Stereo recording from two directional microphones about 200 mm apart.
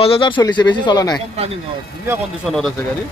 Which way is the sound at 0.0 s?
25° left (ahead or behind).